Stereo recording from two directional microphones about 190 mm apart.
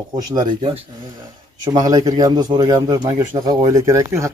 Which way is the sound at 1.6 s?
20° right (ahead or behind).